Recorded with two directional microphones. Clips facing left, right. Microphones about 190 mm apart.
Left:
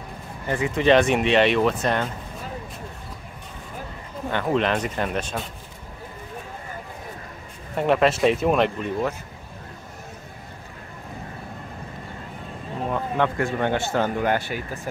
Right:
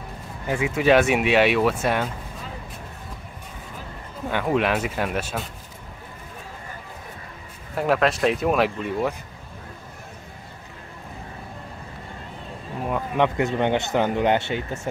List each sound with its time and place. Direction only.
0.5 s speech: 5° right (ahead or behind)
4.3 s speech: 10° right (ahead or behind)
7.7 s speech: centre (ahead or behind)
12.9 s speech: 15° right (ahead or behind)